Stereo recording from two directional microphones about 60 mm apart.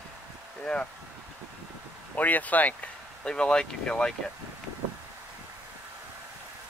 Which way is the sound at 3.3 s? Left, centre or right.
Centre.